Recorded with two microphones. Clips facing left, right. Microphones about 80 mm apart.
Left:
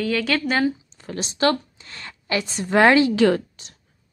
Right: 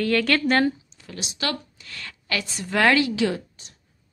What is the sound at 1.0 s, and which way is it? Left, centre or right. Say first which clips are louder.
A woman's voice: left 10 dB; left.